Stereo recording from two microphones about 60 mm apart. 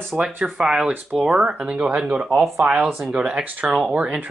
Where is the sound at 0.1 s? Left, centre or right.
Centre.